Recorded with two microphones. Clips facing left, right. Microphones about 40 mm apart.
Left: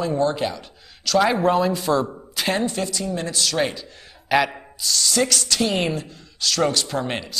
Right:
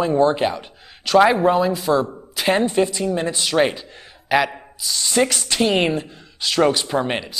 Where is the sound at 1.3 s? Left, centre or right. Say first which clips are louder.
Right 2 dB; centre.